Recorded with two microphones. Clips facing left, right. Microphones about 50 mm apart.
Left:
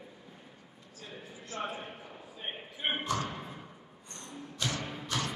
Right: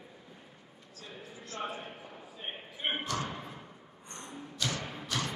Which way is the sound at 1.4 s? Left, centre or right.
Centre.